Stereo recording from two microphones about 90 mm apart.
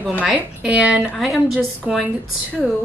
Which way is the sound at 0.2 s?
10° right (ahead or behind).